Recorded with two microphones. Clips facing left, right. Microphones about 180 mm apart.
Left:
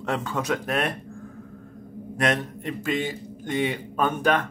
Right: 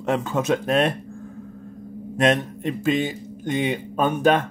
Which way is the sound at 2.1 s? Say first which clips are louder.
Right 5 dB; 25° right (ahead or behind).